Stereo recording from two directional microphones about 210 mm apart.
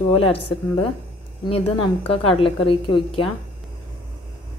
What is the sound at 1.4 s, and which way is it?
A woman's voice, 25° left (ahead or behind).